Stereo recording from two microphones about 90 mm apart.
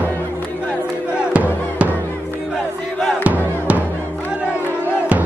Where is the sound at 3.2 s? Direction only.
15° right (ahead or behind).